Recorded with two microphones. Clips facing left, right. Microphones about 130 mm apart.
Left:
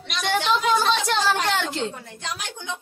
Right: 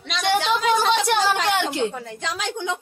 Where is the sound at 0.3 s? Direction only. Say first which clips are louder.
Right 1 dB; 10° right (ahead or behind).